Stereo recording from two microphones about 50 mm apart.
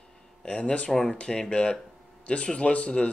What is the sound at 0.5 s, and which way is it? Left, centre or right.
Speech, left.